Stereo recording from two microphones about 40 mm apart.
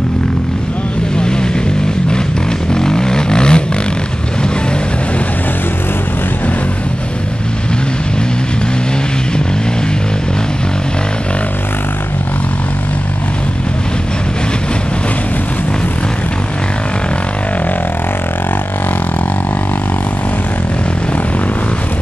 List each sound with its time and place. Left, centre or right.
1.1 s vehicle: left
2.7 s vehicle: centre